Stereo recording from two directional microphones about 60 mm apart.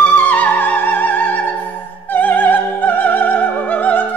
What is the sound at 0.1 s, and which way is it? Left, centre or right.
Music, left.